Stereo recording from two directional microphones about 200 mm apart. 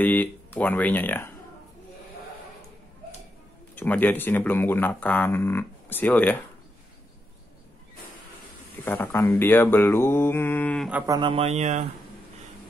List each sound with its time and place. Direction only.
0.0 s speech: 10° left (ahead or behind)
3.7 s speech: 10° left (ahead or behind)
8.8 s speech: 10° left (ahead or behind)
10.9 s speech: 10° right (ahead or behind)
11.1 s a man's voice: 25° right (ahead or behind)